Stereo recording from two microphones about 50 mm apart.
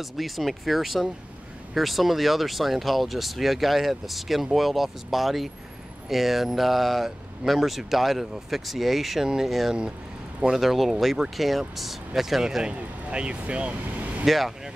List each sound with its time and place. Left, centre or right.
0.0 s speech: centre; by 14.0 s right
14.2 s speech: centre